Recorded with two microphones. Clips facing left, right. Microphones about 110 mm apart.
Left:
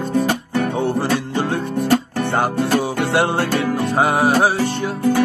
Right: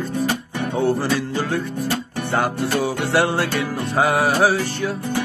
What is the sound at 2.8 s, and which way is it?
Music, 30° left (ahead or behind).